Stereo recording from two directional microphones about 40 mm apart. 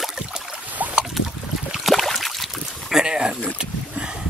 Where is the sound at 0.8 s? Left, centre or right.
Right.